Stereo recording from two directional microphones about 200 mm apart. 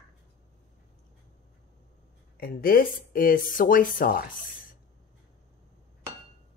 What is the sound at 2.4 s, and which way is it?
Speech, 45° left (ahead or behind).